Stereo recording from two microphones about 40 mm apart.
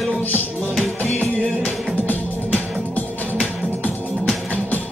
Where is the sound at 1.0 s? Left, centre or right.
Left.